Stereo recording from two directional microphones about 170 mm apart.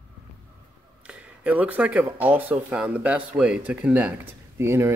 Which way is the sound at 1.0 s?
5° right (ahead or behind).